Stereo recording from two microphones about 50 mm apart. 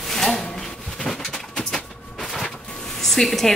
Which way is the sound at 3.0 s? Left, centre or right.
Centre.